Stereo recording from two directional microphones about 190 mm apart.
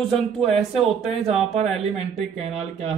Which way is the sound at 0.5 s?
35° right (ahead or behind).